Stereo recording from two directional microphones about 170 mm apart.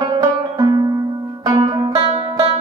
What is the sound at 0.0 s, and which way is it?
Music, 20° right (ahead or behind).